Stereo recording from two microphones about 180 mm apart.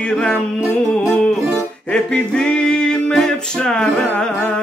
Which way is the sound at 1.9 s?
5° left (ahead or behind).